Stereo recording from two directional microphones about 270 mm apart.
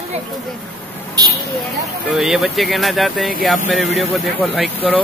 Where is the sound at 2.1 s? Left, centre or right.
Centre.